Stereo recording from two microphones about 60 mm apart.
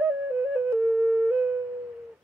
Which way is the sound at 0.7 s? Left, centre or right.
Centre.